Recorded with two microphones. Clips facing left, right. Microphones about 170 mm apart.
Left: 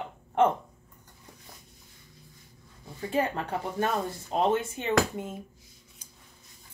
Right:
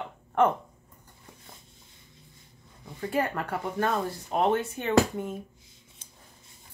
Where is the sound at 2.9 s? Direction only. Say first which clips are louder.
Even; 20° left (ahead or behind).